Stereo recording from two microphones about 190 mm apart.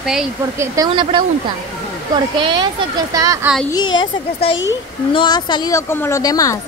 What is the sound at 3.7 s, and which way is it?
Speech, 25° left (ahead or behind).